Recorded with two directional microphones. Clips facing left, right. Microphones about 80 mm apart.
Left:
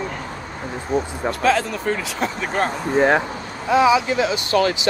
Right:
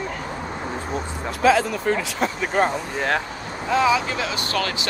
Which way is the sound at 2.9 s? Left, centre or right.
Centre.